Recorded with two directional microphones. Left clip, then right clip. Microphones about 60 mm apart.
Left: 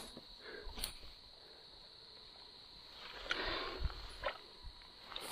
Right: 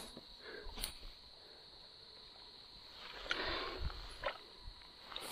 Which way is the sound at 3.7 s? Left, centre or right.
Left.